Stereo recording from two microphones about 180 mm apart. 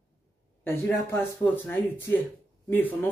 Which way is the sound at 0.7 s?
10° left (ahead or behind).